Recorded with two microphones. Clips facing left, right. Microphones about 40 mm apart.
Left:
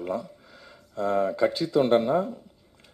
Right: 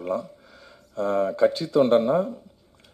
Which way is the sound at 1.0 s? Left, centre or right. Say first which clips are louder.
Right 2 dB; centre.